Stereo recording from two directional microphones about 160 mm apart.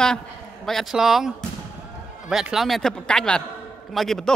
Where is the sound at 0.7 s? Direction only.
Centre (ahead or behind).